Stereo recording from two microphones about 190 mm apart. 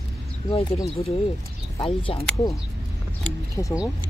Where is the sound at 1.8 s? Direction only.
30° left (ahead or behind).